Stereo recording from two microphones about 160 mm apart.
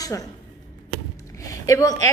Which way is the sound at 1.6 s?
20° left (ahead or behind).